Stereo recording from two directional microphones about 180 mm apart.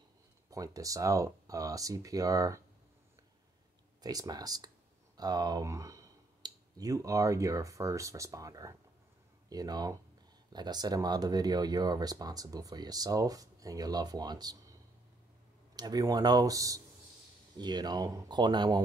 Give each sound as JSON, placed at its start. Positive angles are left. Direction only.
{"t": 0.5, "sound": "speech", "side_deg": -20}
{"t": 4.0, "sound": "speech", "side_deg": -20}